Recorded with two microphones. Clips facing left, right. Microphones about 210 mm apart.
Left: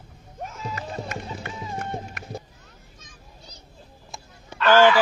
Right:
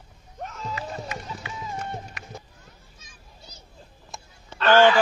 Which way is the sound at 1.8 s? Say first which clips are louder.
Left 2 dB; 50° left (ahead or behind).